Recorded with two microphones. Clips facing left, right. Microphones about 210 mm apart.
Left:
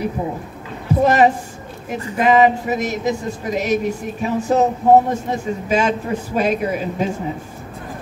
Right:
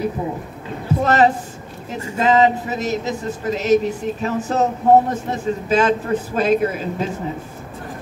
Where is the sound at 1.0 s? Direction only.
10° left (ahead or behind).